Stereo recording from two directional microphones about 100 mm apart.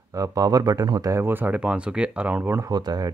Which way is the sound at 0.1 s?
35° right (ahead or behind).